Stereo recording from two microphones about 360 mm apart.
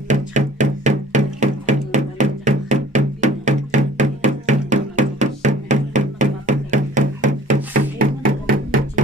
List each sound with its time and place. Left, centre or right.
0.1 s music: centre